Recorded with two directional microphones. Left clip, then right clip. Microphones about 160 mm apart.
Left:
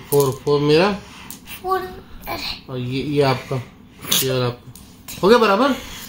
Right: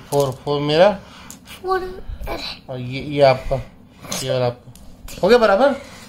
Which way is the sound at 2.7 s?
15° right (ahead or behind).